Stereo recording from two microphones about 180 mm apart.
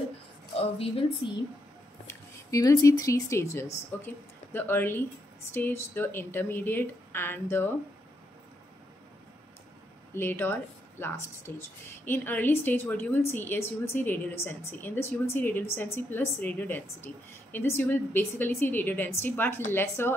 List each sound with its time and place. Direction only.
0.6 s a woman's voice: 30° left (ahead or behind)
2.0 s a woman's voice: 20° left (ahead or behind)
10.1 s a woman's voice: 10° left (ahead or behind)